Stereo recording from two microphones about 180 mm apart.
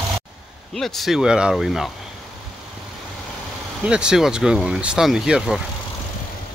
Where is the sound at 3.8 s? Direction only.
5° right (ahead or behind).